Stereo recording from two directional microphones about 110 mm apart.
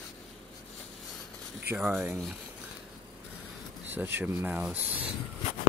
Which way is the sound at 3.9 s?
20° right (ahead or behind).